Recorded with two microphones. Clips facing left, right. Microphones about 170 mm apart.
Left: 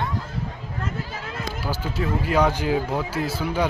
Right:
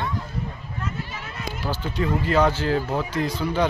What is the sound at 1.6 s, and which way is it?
Speech, 10° left (ahead or behind).